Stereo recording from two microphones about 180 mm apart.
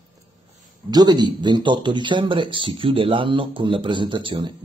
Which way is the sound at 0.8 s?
25° right (ahead or behind).